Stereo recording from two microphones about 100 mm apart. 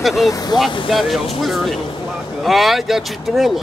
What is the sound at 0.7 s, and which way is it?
Speech, 55° left (ahead or behind).